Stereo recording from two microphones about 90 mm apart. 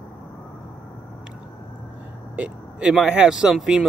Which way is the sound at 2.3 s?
15° right (ahead or behind).